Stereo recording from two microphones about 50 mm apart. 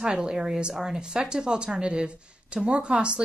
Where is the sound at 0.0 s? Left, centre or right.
Centre.